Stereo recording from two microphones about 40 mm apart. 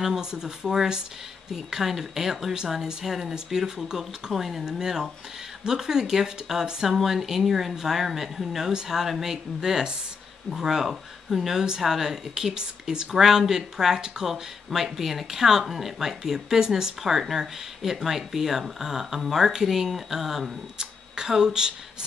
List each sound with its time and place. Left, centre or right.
0.0 s speech: centre